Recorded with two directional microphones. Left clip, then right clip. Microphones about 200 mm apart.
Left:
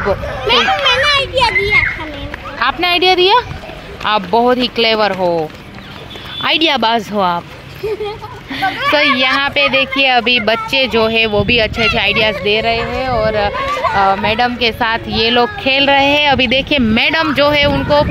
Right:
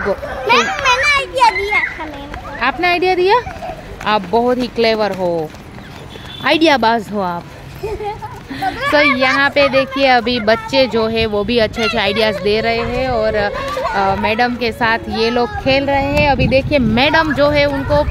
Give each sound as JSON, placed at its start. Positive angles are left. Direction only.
{"t": 0.5, "sound": "children playing", "side_deg": -5}
{"t": 2.6, "sound": "speech", "side_deg": -5}
{"t": 6.4, "sound": "speech", "side_deg": -5}
{"t": 8.9, "sound": "speech", "side_deg": -10}
{"t": 16.3, "sound": "speech", "side_deg": 50}
{"t": 16.6, "sound": "speech", "side_deg": -5}